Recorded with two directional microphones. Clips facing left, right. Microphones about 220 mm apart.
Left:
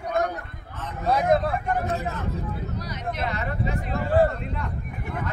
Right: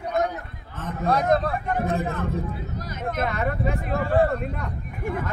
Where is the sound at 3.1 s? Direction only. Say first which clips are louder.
Right 5 dB; 50° right (ahead or behind).